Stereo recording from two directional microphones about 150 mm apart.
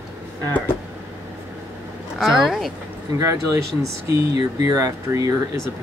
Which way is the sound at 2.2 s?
Centre (ahead or behind).